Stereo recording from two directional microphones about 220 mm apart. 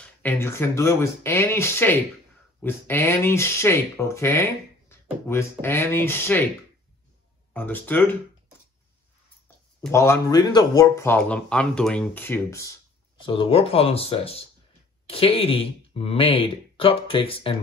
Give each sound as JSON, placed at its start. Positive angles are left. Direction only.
{"t": 0.0, "sound": "speech", "side_deg": 10}
{"t": 7.5, "sound": "speech", "side_deg": 10}
{"t": 9.8, "sound": "speech", "side_deg": 10}
{"t": 13.2, "sound": "speech", "side_deg": 25}